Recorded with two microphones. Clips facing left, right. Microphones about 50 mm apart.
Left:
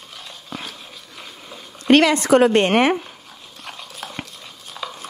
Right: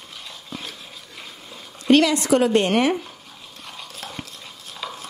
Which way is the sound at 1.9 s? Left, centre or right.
Left.